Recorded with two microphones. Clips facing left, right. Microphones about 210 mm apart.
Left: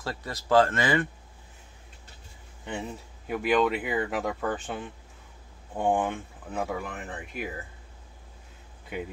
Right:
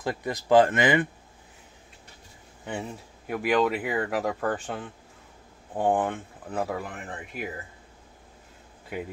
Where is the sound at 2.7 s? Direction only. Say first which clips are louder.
Right 1 dB; 5° right (ahead or behind).